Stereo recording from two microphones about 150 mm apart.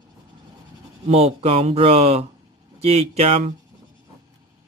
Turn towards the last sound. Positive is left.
turn(degrees=-45)  # may be behind; listen again after turning